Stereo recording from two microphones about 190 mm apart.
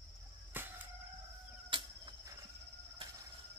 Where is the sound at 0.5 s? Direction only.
10° right (ahead or behind).